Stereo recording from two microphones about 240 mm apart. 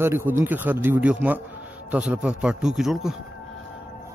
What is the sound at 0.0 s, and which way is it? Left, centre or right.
A man's voice, centre.